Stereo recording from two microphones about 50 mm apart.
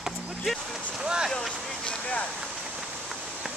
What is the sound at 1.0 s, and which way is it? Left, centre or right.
Speech, centre.